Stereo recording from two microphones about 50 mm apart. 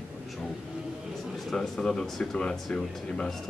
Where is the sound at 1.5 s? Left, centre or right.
Centre.